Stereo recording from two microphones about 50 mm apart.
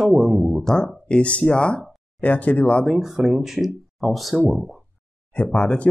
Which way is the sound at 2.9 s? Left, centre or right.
Centre.